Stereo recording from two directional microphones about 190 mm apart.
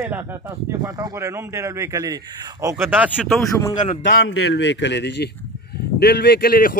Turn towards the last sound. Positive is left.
turn(degrees=50)  # may be behind; listen again after turning